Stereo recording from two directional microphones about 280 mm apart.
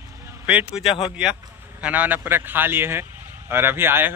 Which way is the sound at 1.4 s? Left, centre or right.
Centre.